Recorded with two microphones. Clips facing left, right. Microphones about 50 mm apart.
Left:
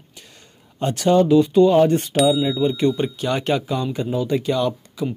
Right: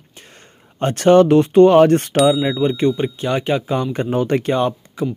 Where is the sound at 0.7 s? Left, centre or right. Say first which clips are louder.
Right 5 dB; right.